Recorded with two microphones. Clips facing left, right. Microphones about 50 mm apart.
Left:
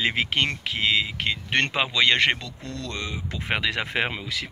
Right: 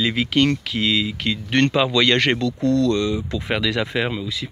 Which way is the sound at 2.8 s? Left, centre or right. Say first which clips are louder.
Right 12 dB; left.